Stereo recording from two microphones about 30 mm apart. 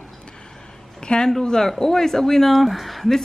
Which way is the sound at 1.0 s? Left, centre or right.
Left.